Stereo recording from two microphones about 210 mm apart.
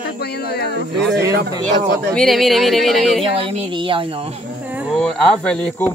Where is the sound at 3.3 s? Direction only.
25° right (ahead or behind).